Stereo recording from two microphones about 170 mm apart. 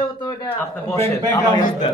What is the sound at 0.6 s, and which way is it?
A man's voice, 15° left (ahead or behind).